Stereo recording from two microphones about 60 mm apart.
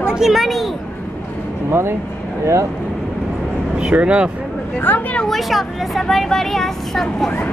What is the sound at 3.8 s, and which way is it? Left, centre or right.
Speech, centre.